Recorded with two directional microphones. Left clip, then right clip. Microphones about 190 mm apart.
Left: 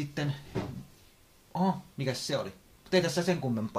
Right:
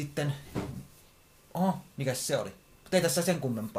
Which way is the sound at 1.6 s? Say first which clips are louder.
Even; 5° right (ahead or behind).